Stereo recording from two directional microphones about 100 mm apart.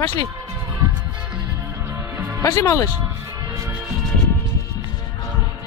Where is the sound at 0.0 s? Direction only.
45° left (ahead or behind).